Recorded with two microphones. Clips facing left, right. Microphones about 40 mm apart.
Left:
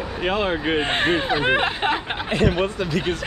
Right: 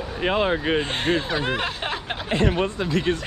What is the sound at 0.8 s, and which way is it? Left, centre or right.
Speech, left.